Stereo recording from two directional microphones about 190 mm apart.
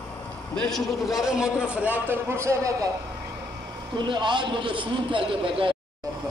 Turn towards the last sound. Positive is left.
turn(degrees=-30)  # may be behind; listen again after turning